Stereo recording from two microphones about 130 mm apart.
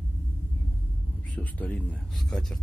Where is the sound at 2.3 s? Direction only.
5° left (ahead or behind).